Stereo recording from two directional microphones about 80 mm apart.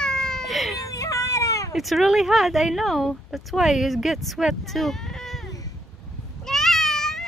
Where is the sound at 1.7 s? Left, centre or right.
Centre.